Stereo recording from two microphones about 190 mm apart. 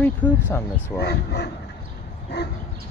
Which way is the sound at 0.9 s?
60° left (ahead or behind).